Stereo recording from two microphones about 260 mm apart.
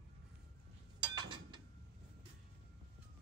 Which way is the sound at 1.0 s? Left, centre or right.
Centre.